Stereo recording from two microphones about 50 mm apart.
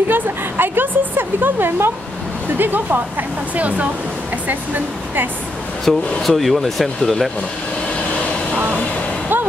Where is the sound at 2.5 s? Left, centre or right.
Right.